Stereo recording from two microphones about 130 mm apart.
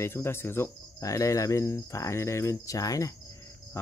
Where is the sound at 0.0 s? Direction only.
20° left (ahead or behind).